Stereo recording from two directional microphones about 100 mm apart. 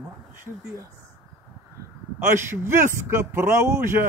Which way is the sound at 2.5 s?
25° right (ahead or behind).